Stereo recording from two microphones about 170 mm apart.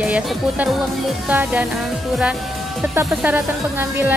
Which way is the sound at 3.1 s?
10° right (ahead or behind).